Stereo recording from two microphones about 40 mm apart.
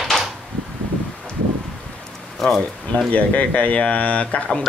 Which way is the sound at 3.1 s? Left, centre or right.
Left.